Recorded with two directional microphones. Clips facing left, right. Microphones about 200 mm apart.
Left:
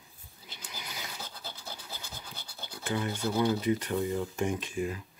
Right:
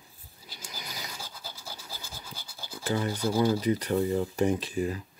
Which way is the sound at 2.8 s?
35° right (ahead or behind).